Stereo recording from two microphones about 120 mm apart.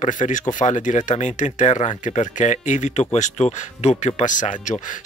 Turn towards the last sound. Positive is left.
turn(degrees=90)